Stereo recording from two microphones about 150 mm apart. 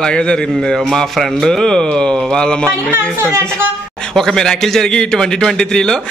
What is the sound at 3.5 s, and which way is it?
A man's voice, 5° left (ahead or behind).